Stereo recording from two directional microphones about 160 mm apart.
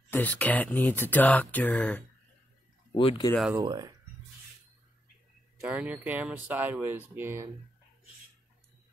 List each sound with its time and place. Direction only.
0.1 s speech: 10° left (ahead or behind)
2.9 s speech: 30° left (ahead or behind)
3.5 s speech: 25° right (ahead or behind)
5.7 s speech: 10° right (ahead or behind)